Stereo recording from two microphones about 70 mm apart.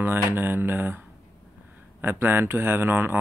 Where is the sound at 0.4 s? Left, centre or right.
Right.